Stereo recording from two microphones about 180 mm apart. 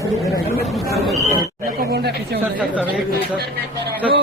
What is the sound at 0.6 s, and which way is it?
Speech, centre (ahead or behind).